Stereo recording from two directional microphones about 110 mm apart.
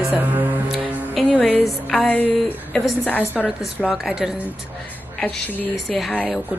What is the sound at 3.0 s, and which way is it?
Music, 15° left (ahead or behind).